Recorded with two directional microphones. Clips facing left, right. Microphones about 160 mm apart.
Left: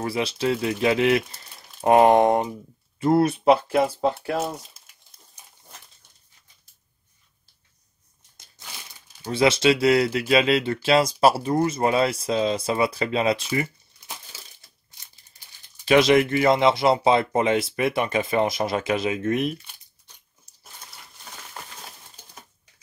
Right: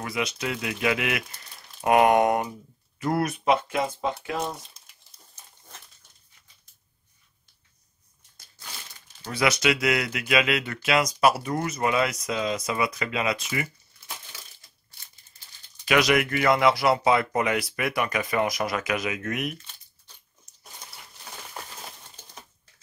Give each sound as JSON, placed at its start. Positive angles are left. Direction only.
{"t": 0.0, "sound": "speech", "side_deg": 30}
{"t": 4.4, "sound": "speech", "side_deg": 5}
{"t": 5.4, "sound": "a sound", "side_deg": 15}
{"t": 8.4, "sound": "crushing", "side_deg": 20}
{"t": 9.2, "sound": "speech", "side_deg": 25}
{"t": 13.9, "sound": "crushing", "side_deg": 25}
{"t": 15.8, "sound": "speech", "side_deg": 25}